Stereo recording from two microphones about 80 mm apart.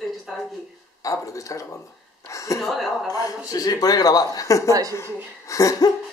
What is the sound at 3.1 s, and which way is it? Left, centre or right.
Speech, left.